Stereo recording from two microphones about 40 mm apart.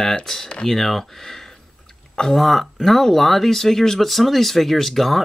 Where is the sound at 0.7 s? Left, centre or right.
Centre.